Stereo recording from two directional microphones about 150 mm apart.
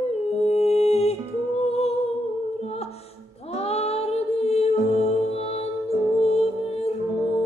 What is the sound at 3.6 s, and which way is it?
Female singing, 45° left (ahead or behind).